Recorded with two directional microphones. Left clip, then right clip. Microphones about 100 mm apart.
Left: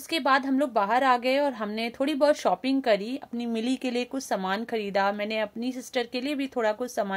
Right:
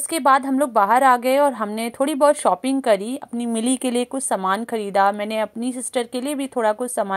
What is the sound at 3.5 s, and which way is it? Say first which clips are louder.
Speech: right 7 dB; 60° right (ahead or behind).